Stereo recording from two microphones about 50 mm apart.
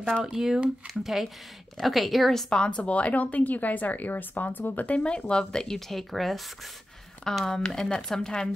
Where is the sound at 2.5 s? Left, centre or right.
Left.